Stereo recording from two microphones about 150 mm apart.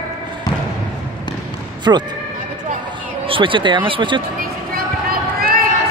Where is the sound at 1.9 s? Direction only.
25° right (ahead or behind).